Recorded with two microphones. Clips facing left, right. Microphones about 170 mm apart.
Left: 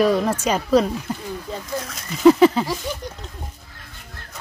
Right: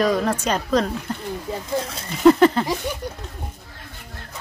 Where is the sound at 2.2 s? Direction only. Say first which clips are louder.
Left 1 dB; 5° left (ahead or behind).